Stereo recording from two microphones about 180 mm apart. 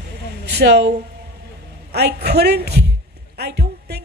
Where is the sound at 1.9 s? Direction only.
65° right (ahead or behind).